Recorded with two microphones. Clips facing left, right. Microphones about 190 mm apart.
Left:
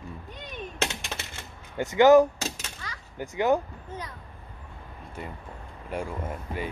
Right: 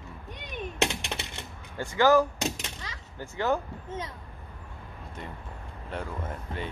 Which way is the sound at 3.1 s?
15° left (ahead or behind).